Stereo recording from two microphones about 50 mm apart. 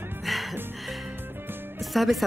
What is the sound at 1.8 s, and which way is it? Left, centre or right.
Music, centre.